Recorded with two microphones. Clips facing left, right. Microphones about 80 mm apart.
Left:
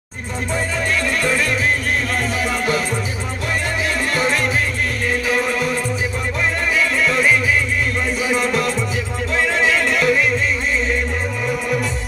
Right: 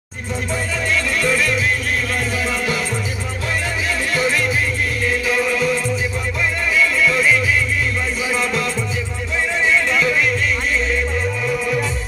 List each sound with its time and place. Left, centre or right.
1.2 s music: left
4.1 s music: left
5.0 s music: left
8.3 s music: left
9.6 s music: left